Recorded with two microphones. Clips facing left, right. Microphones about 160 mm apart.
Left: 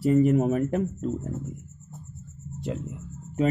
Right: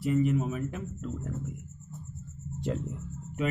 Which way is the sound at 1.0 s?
30° left (ahead or behind).